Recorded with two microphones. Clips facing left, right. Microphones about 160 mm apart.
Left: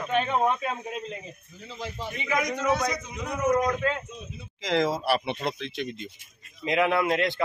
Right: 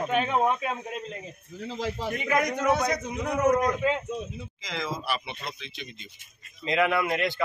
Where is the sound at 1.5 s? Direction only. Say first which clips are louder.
Right 6 dB; 90° right.